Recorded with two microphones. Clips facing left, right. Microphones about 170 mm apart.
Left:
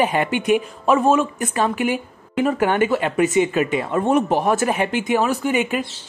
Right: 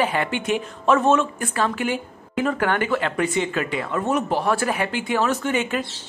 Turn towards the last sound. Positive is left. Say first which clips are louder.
# left 2 dB
turn(degrees=15)  # may be behind; listen again after turning